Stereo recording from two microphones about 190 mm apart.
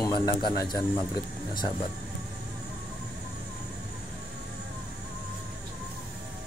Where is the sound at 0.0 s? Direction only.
20° left (ahead or behind).